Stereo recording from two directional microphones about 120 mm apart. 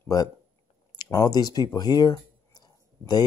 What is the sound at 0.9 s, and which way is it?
Speech, 30° left (ahead or behind).